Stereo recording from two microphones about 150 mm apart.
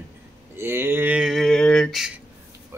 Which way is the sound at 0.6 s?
15° right (ahead or behind).